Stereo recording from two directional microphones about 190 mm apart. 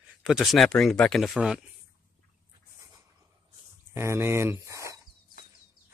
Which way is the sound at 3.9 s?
15° right (ahead or behind).